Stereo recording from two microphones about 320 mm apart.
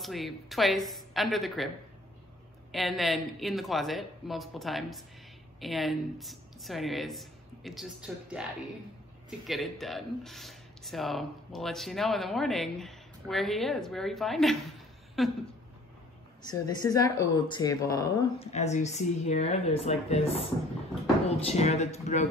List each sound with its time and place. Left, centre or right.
0.0 s speech: centre
2.7 s speech: centre
9.5 s speech: centre
16.4 s speech: centre
18.6 s speech: left
21.5 s speech: left